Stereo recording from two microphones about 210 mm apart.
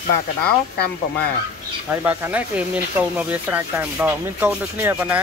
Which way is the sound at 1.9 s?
10° right (ahead or behind).